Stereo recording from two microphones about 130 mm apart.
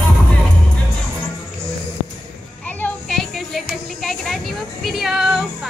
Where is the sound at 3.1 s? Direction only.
Centre (ahead or behind).